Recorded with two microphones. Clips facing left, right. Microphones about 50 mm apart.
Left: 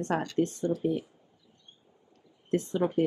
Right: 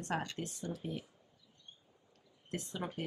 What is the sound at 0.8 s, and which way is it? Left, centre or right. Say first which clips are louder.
Speech: left 13 dB; left.